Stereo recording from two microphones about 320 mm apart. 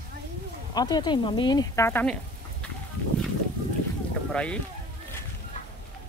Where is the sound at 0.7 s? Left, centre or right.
Centre.